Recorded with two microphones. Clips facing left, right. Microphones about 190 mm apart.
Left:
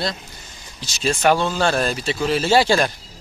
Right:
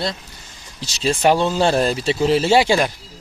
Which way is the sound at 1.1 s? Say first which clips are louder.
Right 2 dB; 20° right (ahead or behind).